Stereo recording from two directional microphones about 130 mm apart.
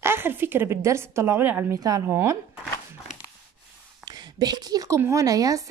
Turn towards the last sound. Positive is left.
turn(degrees=-25)  # may be behind; listen again after turning